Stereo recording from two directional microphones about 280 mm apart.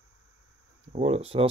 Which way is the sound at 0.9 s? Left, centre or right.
Right.